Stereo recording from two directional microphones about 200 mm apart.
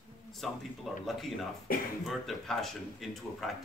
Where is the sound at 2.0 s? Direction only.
Centre (ahead or behind).